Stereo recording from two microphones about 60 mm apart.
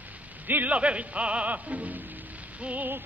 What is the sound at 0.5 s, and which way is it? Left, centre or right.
Music, right.